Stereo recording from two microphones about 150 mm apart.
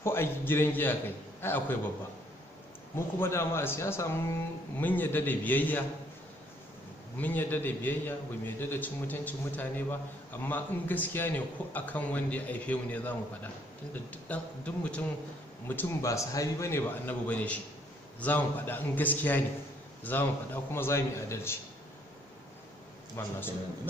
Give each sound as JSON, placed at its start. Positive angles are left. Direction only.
{"t": 0.0, "sound": "a man's voice", "side_deg": 15}
{"t": 3.2, "sound": "a man's voice", "side_deg": 15}
{"t": 7.2, "sound": "a man's voice", "side_deg": 10}
{"t": 23.2, "sound": "a man's voice", "side_deg": 15}